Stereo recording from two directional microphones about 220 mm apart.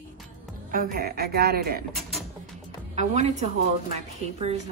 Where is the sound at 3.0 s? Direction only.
30° right (ahead or behind).